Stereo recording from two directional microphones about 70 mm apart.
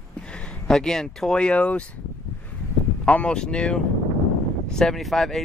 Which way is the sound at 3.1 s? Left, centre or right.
Centre.